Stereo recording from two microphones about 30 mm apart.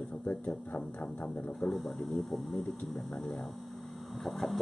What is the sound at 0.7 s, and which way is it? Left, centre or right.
Speech, left.